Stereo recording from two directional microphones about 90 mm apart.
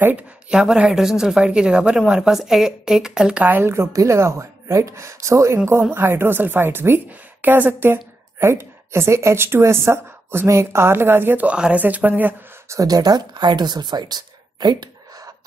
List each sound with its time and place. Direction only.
0.5 s a woman's voice: 10° right (ahead or behind)
3.4 s a woman's voice: 25° right (ahead or behind)
12.6 s speech: 40° right (ahead or behind)